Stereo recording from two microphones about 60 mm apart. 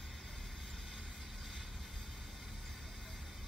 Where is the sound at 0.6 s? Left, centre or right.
Centre.